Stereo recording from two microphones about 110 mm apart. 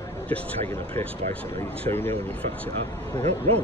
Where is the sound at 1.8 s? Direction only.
20° left (ahead or behind).